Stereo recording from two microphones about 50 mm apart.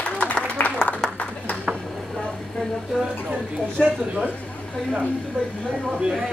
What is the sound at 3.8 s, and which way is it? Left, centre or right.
Speech, centre.